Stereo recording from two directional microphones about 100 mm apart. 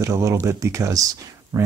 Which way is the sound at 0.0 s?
30° right (ahead or behind).